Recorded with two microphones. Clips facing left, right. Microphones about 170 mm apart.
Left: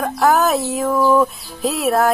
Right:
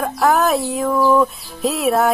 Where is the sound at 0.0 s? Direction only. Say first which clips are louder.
Left 1 dB; centre (ahead or behind).